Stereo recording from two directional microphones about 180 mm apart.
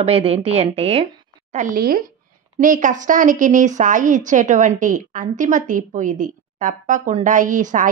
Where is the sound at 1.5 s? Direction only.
50° right (ahead or behind).